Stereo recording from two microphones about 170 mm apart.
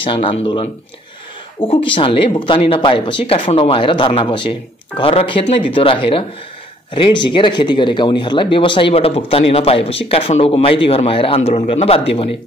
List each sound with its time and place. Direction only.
0.0 s speech: 30° left (ahead or behind)